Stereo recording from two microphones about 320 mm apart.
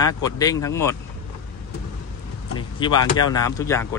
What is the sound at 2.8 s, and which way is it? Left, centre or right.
Speech, centre.